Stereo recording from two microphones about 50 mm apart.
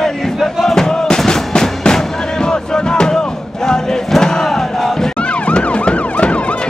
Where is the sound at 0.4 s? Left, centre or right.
Centre.